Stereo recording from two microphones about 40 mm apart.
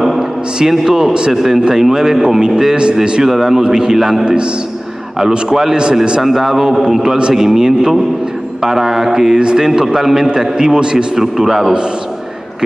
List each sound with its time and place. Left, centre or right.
0.7 s a man's voice: centre
1.3 s a man's voice: centre
2.7 s a man's voice: right
3.3 s a man's voice: centre
3.6 s a man's voice: centre
6.2 s a man's voice: centre
6.8 s a man's voice: centre
11.1 s a man's voice: centre